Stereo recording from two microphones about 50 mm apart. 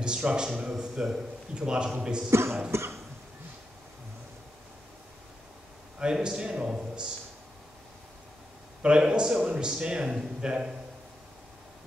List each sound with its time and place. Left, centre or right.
0.0 s speech: centre
0.7 s a man's voice: centre
2.3 s cough: right
5.9 s a man's voice: centre
8.8 s a man's voice: centre